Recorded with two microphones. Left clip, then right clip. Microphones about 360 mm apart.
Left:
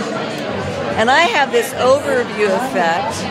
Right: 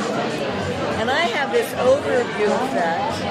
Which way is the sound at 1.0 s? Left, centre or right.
Left.